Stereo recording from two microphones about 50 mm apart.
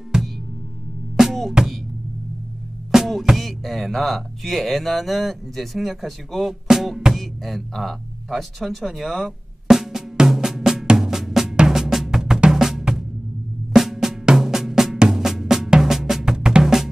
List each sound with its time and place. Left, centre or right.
1.1 s music: centre
2.9 s speech: centre
7.2 s a sound: centre
11.5 s drum: centre
14.0 s drum: centre